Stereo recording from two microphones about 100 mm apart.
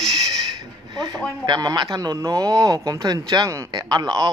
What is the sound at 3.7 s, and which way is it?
Speech, 45° right (ahead or behind).